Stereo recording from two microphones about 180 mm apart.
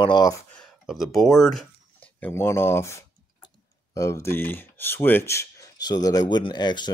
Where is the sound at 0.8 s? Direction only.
Centre (ahead or behind).